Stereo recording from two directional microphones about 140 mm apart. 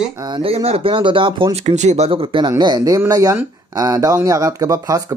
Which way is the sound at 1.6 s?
55° right (ahead or behind).